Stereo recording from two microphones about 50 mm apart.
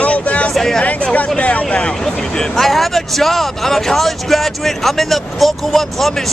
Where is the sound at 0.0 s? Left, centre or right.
Left.